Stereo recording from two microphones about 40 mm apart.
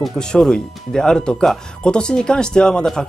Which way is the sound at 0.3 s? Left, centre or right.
Centre.